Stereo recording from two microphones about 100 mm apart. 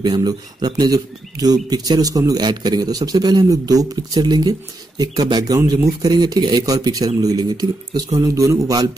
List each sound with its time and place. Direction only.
0.0 s speech: 45° right (ahead or behind)